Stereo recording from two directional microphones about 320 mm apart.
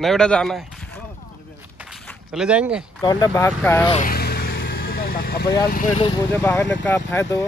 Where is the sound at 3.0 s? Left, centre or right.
Centre.